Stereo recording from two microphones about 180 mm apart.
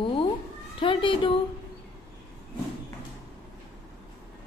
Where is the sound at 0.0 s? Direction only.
30° left (ahead or behind).